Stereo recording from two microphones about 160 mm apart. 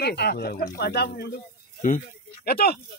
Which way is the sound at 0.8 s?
90° left.